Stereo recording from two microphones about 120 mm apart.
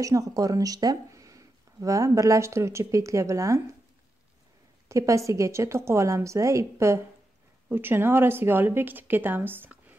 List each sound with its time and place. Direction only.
0.0 s speech: 30° right (ahead or behind)
4.8 s a woman's voice: 25° right (ahead or behind)